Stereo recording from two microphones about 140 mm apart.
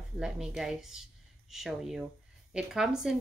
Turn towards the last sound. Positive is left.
turn(degrees=-5)  # may be behind; listen again after turning